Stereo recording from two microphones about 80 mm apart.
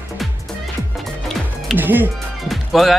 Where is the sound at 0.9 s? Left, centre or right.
Centre.